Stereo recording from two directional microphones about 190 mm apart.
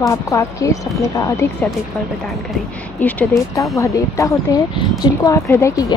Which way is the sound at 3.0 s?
10° left (ahead or behind).